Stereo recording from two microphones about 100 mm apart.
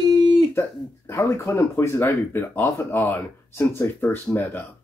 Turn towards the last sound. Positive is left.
turn(degrees=20)  # may be behind; listen again after turning